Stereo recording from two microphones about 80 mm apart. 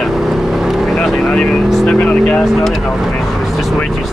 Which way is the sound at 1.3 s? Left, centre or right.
Centre.